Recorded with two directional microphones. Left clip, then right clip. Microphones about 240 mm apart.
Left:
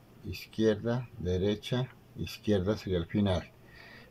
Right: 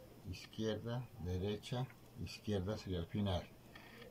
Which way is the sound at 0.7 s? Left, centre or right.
Left.